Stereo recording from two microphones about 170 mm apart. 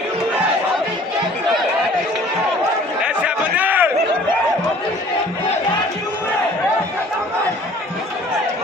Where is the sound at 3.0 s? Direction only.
5° right (ahead or behind).